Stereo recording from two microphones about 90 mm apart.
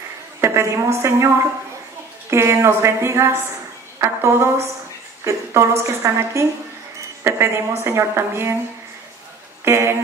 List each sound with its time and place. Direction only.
0.4 s a woman's voice: 30° right (ahead or behind)
9.7 s a woman's voice: 30° right (ahead or behind)